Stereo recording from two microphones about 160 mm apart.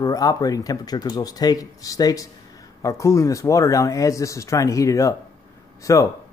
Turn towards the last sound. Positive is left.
turn(degrees=20)  # may be behind; listen again after turning